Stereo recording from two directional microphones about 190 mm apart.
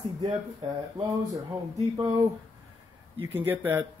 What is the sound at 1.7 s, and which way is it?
Speech, 15° right (ahead or behind).